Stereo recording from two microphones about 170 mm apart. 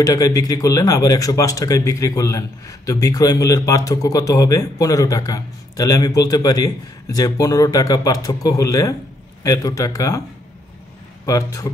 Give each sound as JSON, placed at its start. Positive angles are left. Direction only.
{"t": 0.0, "sound": "a man's voice", "side_deg": 20}
{"t": 11.2, "sound": "a man's voice", "side_deg": 20}